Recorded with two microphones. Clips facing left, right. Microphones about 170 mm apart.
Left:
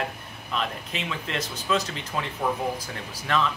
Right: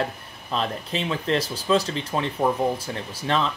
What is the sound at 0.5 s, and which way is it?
Speech, 35° right (ahead or behind).